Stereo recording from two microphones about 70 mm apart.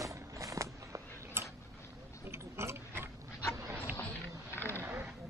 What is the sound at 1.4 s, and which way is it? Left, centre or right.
Tick-tock, right.